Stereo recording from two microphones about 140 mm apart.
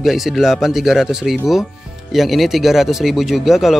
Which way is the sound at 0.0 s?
Centre (ahead or behind).